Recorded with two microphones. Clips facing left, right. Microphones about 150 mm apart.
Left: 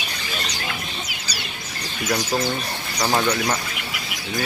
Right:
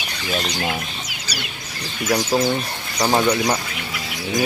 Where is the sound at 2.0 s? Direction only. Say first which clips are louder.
Right 4 dB; 25° right (ahead or behind).